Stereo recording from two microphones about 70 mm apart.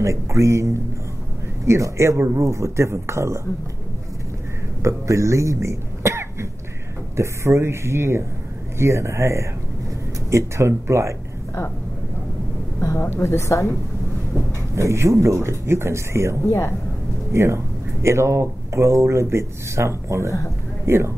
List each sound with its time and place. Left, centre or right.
0.0 s speech: right
4.8 s speech: right
12.8 s a woman's voice: left
14.8 s speech: right